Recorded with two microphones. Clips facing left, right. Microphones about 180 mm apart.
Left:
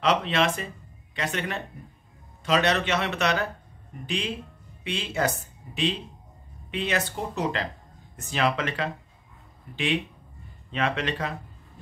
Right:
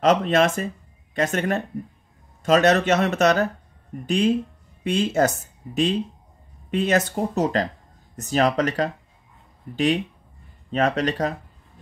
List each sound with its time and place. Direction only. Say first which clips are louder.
0.0 s speech: right 6 dB; 45° right (ahead or behind)
10.7 s speech: right 6 dB; 40° right (ahead or behind)